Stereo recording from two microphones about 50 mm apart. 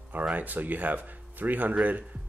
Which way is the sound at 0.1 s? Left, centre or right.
Right.